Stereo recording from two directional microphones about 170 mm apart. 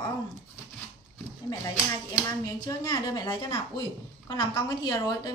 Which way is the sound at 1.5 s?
15° left (ahead or behind).